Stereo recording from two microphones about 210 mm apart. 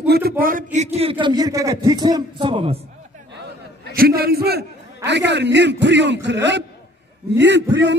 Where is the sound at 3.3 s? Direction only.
50° right (ahead or behind).